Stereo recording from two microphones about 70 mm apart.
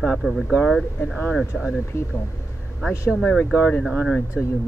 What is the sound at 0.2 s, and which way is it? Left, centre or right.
Speech, centre.